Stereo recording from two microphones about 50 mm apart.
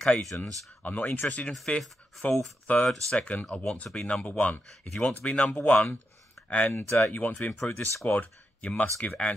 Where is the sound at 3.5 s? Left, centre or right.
Centre.